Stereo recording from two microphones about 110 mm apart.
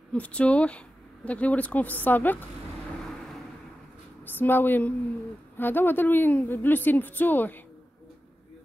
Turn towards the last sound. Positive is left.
turn(degrees=15)  # may be behind; listen again after turning